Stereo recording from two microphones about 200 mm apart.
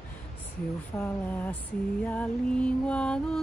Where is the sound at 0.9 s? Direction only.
10° left (ahead or behind).